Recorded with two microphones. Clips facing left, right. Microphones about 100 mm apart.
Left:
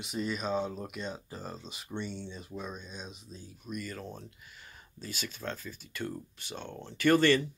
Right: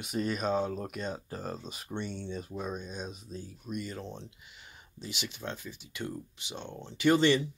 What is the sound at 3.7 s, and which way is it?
Speech, 25° right (ahead or behind).